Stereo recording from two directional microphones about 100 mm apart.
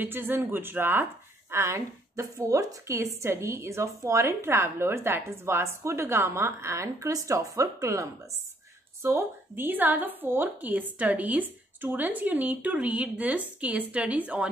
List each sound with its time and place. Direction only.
0.0 s a woman's voice: 20° right (ahead or behind)